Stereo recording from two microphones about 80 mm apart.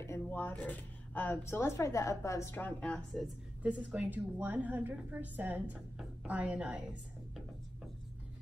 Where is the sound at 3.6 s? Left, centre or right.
Centre.